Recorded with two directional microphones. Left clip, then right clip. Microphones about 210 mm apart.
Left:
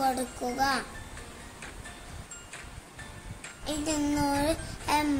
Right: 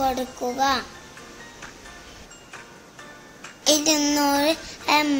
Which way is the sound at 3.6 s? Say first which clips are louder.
Right 13 dB; 25° right (ahead or behind).